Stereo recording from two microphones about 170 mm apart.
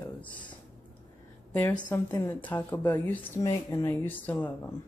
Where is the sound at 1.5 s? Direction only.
10° left (ahead or behind).